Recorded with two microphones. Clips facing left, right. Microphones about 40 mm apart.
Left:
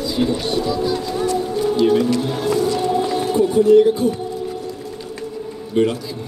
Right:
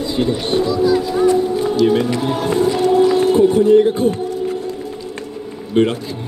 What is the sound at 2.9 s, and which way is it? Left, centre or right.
Music, right.